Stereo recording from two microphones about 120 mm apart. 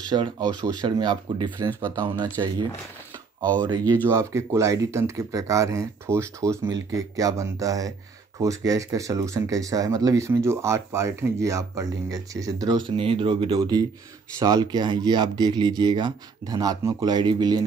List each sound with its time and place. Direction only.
0.1 s speech: 35° right (ahead or behind)
4.1 s speech: 25° right (ahead or behind); by 13.6 s 50° right (ahead or behind)
14.4 s speech: 30° right (ahead or behind)